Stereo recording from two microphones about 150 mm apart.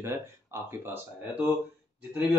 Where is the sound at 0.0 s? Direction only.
15° right (ahead or behind).